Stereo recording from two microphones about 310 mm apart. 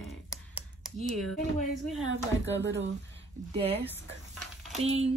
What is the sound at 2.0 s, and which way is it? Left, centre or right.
Speech, right.